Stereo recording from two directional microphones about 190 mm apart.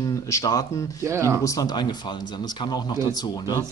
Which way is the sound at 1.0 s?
15° right (ahead or behind).